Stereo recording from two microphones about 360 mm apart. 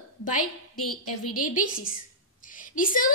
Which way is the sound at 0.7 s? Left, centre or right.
Left.